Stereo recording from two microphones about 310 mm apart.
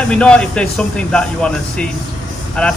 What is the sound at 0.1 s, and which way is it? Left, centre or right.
Speech, centre.